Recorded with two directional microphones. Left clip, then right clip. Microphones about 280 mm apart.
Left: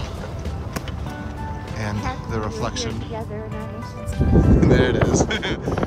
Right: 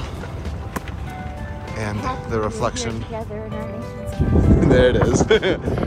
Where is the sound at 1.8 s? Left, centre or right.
Centre.